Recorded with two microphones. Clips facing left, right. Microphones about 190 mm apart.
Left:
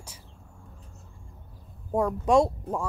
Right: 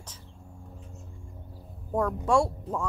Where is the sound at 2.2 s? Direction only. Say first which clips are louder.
Left 5 dB; 20° left (ahead or behind).